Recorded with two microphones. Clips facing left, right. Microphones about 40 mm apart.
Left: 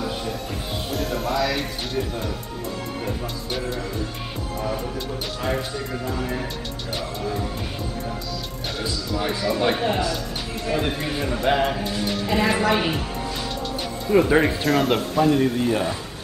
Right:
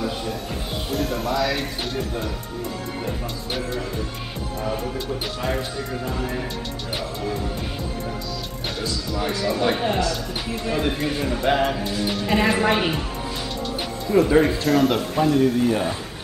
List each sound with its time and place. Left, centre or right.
0.9 s speech: centre
4.6 s speech: centre
9.4 s speech: centre
14.1 s speech: centre
14.5 s speech: centre